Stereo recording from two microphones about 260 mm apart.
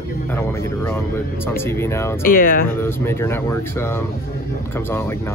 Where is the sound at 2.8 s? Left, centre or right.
Centre.